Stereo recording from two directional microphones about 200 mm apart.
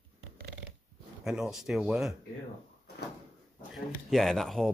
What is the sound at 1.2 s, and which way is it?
Speech, 5° right (ahead or behind).